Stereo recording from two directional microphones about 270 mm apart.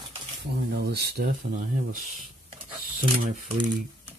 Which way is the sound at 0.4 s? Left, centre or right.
Right.